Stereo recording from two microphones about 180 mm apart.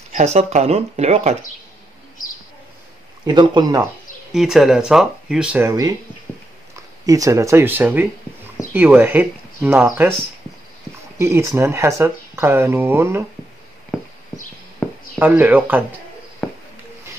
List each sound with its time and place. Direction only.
0.1 s speech: 35° right (ahead or behind)
3.3 s speech: 25° right (ahead or behind)
4.3 s speech: centre (ahead or behind)
5.7 s speech: 20° right (ahead or behind)
11.1 s speech: 15° right (ahead or behind)
14.8 s chop: 5° left (ahead or behind)
15.1 s speech: 10° right (ahead or behind)
16.4 s a sound: 10° left (ahead or behind)